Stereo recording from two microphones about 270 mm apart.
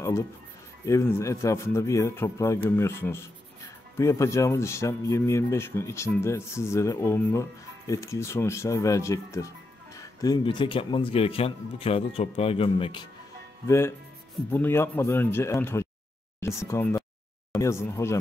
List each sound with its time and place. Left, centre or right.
0.0 s speech: centre